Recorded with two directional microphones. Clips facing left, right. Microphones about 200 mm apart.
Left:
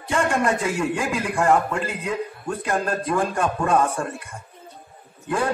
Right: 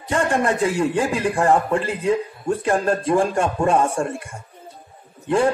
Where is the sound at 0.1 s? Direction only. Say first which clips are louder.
Right 1 dB; 35° right (ahead or behind).